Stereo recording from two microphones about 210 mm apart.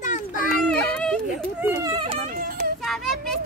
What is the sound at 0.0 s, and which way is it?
Children playing, 35° left (ahead or behind).